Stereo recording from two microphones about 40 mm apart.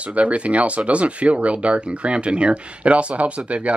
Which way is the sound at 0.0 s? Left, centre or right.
Right.